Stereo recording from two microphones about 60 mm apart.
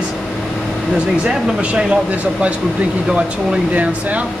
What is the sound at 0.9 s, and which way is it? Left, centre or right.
Speech, centre.